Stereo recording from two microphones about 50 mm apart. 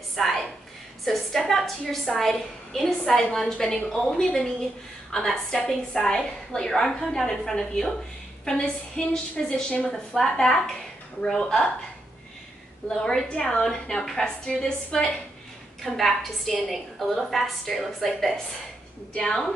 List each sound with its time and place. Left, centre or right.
0.1 s a woman's voice: centre
12.8 s a woman's voice: centre
15.8 s a woman's voice: centre